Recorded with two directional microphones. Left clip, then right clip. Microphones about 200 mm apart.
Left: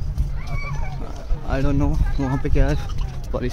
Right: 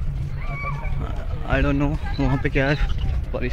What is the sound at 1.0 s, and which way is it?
Speech, 10° left (ahead or behind).